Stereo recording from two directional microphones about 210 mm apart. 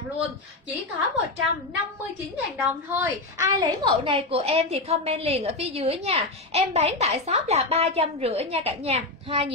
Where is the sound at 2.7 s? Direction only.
10° right (ahead or behind).